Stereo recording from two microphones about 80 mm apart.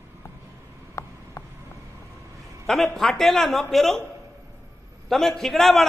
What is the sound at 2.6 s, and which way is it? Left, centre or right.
A man's voice, centre.